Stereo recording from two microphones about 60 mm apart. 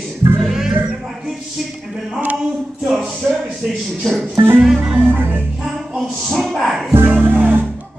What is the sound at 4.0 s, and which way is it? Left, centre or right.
Speech, centre.